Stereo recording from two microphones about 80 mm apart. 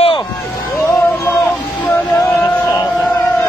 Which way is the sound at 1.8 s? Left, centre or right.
Left.